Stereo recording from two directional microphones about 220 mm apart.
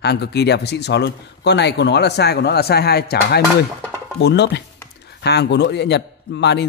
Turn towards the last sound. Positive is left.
turn(degrees=50)  # may be behind; listen again after turning